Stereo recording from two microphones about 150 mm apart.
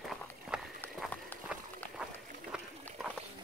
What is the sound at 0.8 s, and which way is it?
Run, 15° left (ahead or behind).